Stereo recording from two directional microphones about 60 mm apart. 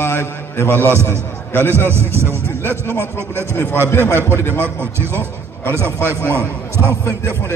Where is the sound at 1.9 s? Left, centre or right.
Right.